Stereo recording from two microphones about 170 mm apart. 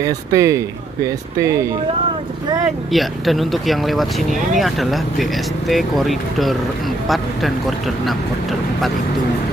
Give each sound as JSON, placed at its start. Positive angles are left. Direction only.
{"t": 0.0, "sound": "speech", "side_deg": -20}
{"t": 2.9, "sound": "speech", "side_deg": 0}